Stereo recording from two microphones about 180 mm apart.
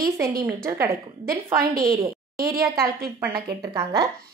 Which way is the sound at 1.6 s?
55° right (ahead or behind).